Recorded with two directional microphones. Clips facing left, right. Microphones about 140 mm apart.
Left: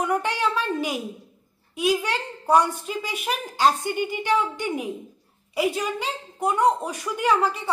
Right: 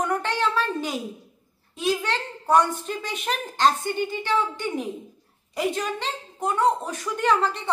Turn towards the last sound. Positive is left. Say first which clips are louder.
# even
turn(degrees=10)  # may be behind; listen again after turning